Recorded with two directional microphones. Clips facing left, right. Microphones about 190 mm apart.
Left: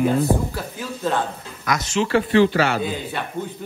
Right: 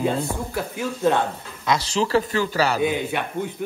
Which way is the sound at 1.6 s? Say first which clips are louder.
Even; 30° right (ahead or behind).